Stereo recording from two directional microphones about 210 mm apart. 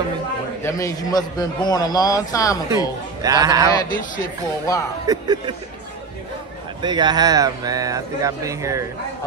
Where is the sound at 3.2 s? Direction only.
15° right (ahead or behind).